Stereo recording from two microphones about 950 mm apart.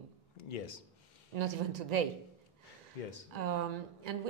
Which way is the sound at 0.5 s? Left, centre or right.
Left.